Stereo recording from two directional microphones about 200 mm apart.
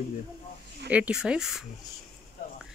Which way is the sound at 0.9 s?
5° right (ahead or behind).